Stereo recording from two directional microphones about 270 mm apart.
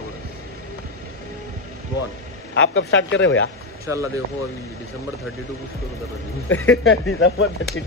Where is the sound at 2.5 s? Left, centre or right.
Left.